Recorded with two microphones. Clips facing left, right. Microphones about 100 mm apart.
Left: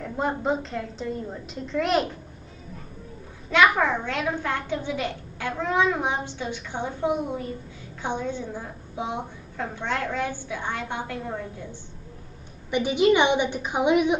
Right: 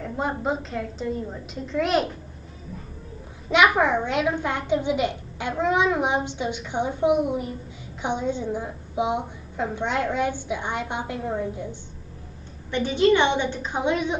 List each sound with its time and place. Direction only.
0.0 s a woman's voice: centre (ahead or behind)
3.4 s a child's voice: 20° right (ahead or behind)
12.7 s a woman's voice: 15° left (ahead or behind)